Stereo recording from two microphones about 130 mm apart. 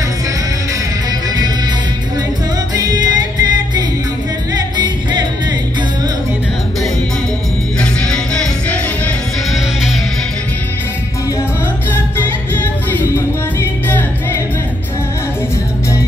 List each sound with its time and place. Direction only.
2.7 s music: 30° right (ahead or behind)
7.8 s music: 5° left (ahead or behind)
12.2 s music: 20° left (ahead or behind)